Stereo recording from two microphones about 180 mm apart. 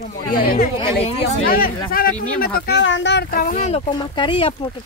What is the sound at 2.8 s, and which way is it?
Speech, 90° left.